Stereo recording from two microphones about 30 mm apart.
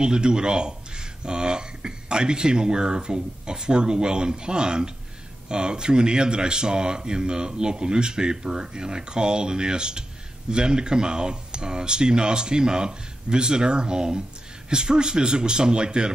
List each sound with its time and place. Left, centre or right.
0.0 s speech: right